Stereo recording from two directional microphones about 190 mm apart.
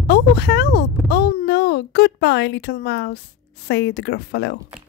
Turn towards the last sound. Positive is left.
turn(degrees=60)  # may be behind; listen again after turning